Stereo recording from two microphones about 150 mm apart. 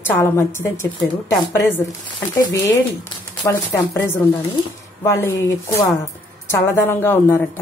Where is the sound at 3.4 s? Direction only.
20° left (ahead or behind).